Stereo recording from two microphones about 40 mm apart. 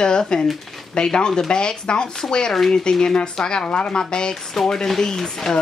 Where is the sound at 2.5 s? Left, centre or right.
Centre.